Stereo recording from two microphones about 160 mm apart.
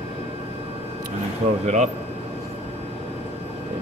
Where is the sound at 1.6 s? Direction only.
45° right (ahead or behind).